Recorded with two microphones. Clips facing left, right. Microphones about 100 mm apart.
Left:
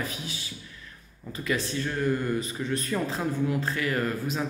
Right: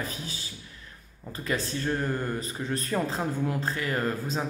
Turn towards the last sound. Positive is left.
turn(degrees=-30)  # may be behind; listen again after turning